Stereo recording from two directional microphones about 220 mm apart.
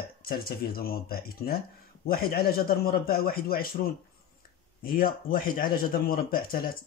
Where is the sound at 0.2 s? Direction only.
45° left (ahead or behind).